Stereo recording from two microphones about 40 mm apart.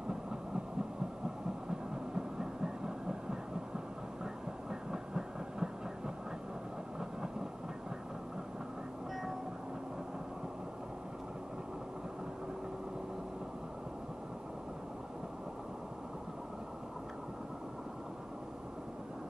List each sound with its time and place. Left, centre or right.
1.7 s train: centre